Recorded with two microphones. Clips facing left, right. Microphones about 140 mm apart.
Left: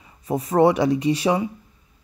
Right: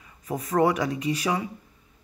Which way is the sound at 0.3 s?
30° left (ahead or behind).